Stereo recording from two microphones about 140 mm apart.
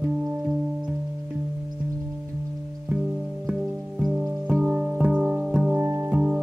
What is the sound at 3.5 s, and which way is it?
Music, 5° right (ahead or behind).